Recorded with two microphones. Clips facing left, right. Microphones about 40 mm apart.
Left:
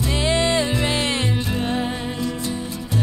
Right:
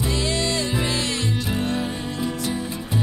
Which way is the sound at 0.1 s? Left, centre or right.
Left.